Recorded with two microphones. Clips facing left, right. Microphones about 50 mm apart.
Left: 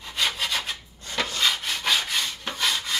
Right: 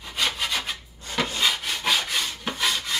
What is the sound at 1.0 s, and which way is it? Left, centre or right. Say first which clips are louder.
Rub: right 1 dB; centre.